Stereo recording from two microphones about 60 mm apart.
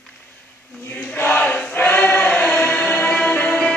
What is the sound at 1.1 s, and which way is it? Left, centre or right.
Chant, left.